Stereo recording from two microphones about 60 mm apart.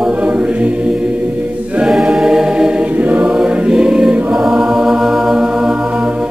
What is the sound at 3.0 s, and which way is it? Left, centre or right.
Choir, right.